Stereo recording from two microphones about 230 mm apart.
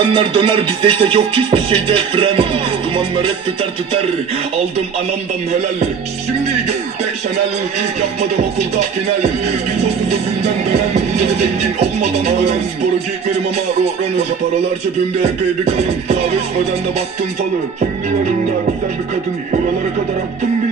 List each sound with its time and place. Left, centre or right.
0.1 s music: right